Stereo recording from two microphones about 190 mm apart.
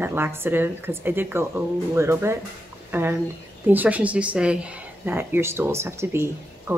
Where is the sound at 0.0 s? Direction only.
10° right (ahead or behind).